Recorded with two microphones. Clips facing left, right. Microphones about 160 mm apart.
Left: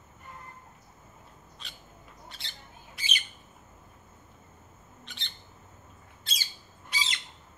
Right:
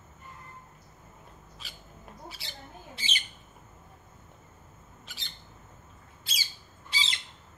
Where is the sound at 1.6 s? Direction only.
5° right (ahead or behind).